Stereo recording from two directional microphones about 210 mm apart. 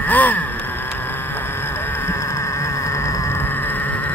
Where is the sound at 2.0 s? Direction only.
15° left (ahead or behind).